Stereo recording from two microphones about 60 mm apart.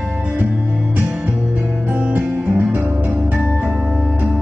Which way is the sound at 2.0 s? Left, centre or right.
Right.